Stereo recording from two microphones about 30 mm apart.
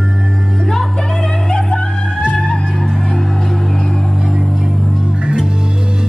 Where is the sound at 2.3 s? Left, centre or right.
Left.